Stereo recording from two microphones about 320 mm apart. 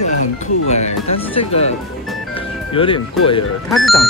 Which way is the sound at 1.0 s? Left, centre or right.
Centre.